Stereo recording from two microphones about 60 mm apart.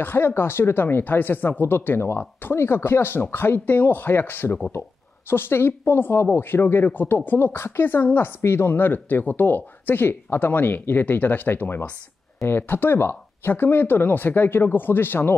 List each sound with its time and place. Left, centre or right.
0.0 s speech: left